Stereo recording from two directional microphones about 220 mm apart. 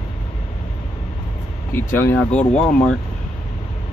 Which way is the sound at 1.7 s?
10° left (ahead or behind).